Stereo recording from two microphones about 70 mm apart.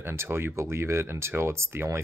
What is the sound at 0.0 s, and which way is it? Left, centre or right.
Speech, right.